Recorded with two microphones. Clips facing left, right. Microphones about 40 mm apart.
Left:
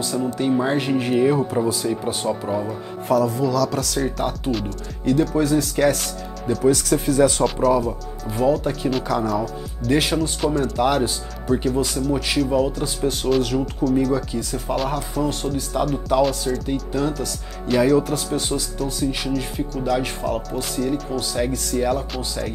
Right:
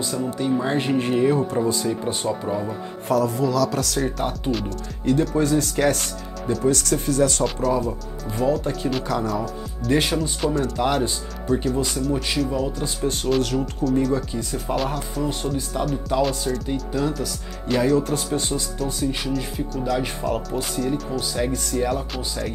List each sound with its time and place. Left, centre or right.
0.4 s speech: centre
0.7 s speech: centre